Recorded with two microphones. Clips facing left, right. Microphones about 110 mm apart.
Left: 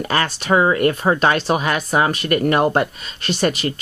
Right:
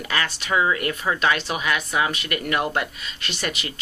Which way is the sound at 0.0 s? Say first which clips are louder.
Left 6 dB; 40° left (ahead or behind).